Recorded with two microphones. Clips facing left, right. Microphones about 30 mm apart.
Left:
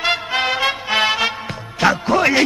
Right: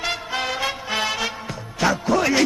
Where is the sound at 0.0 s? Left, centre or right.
Left.